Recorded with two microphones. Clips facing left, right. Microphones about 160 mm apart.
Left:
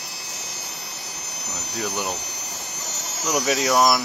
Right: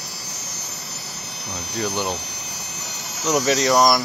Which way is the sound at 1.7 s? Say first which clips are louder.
Right 3 dB; 5° left (ahead or behind).